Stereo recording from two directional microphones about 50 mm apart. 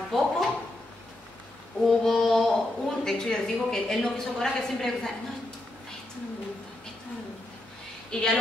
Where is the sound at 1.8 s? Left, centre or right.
Centre.